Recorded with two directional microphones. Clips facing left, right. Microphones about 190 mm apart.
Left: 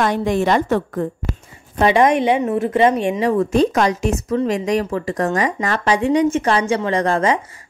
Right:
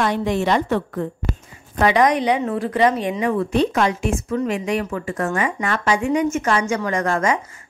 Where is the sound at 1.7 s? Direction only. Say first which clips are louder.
Left 2 dB; 25° left (ahead or behind).